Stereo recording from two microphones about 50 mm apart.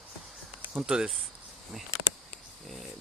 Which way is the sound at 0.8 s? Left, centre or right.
Centre.